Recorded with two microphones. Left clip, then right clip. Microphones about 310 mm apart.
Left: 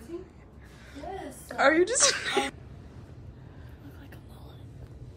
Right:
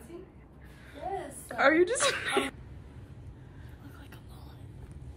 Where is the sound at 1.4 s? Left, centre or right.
Centre.